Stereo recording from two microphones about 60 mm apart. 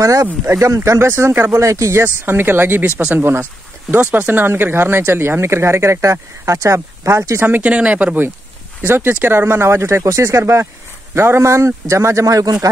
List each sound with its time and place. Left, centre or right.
0.0 s a sound: right
0.5 s speech: right
1.6 s a man's voice: right
2.2 s speech: right
3.0 s speech: right
7.6 s speech: right
8.8 s a man's voice: right